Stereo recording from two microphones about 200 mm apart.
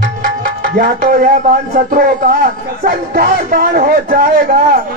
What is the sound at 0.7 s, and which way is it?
A man's voice, 45° right (ahead or behind).